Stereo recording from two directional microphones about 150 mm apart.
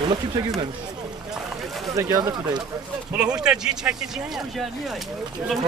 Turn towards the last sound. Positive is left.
turn(degrees=-5)  # may be behind; listen again after turning